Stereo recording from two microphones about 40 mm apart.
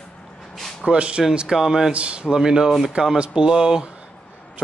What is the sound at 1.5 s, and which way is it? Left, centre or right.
Speech, centre.